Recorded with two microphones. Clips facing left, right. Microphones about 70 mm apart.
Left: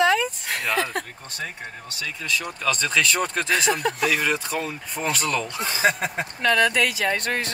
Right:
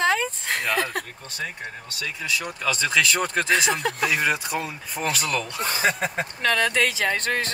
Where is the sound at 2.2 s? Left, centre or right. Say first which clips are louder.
Left 1 dB; centre.